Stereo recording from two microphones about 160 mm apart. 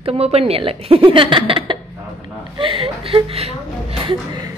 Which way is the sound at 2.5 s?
35° right (ahead or behind).